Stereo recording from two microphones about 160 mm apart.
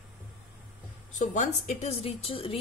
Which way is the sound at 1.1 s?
50° left (ahead or behind).